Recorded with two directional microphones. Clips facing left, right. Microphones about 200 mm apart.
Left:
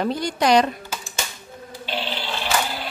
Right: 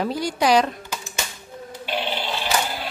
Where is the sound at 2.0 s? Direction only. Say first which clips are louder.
Right 2 dB; 15° right (ahead or behind).